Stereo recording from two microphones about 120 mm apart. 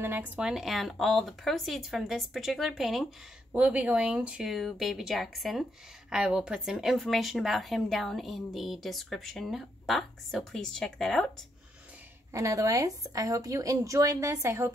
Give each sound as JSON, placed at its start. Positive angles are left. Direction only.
{"t": 0.0, "sound": "speech", "side_deg": -15}
{"t": 0.4, "sound": "speech", "side_deg": -5}
{"t": 3.5, "sound": "speech", "side_deg": -10}
{"t": 12.3, "sound": "a woman's voice", "side_deg": -25}